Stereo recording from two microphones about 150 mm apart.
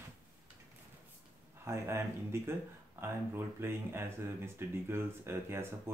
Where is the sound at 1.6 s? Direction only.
15° right (ahead or behind).